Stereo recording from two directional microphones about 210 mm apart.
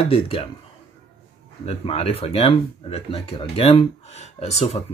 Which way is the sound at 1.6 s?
30° left (ahead or behind).